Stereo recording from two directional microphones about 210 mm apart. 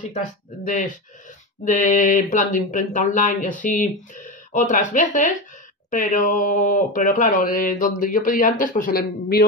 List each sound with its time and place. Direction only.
1.6 s speech: 35° left (ahead or behind)